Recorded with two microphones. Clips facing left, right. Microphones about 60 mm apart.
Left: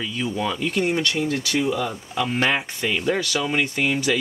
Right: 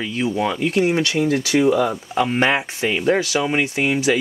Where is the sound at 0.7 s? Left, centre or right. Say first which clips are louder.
Right 4 dB; centre.